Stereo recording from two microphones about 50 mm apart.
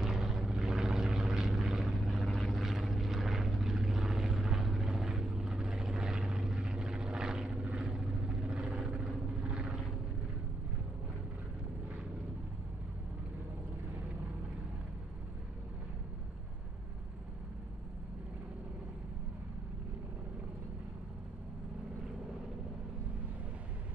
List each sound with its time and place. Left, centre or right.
0.0 s vehicle: centre